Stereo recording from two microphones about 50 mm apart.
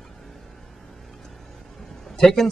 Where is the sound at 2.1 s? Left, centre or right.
Centre.